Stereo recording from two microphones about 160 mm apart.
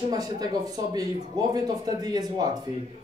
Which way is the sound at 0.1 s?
25° right (ahead or behind).